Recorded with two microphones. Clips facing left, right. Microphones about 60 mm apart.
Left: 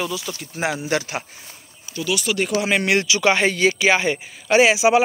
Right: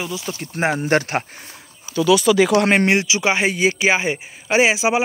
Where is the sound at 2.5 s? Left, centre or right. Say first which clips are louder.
Right 5 dB; right.